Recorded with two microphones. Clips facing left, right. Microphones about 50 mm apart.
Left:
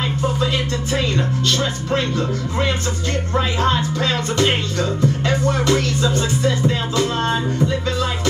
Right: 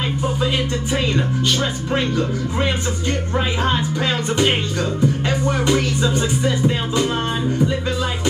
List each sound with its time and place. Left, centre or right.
3.3 s speech: centre
5.0 s music: centre